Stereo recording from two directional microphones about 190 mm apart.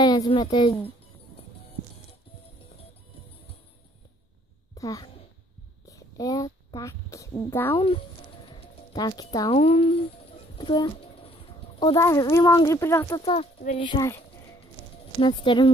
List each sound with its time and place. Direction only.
0.0 s a woman's voice: 20° left (ahead or behind)
4.7 s a child's voice: 20° left (ahead or behind)
7.7 s speech: 30° left (ahead or behind)
8.5 s clip-clop: 25° left (ahead or behind)
9.6 s speech: 30° left (ahead or behind)
10.6 s a sound: 25° left (ahead or behind)
11.8 s speech: 20° left (ahead or behind)
13.2 s speech: 35° left (ahead or behind)
15.1 s speech: 25° left (ahead or behind)